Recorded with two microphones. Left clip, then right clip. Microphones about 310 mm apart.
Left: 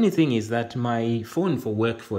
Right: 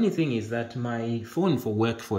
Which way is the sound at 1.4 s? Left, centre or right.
Centre.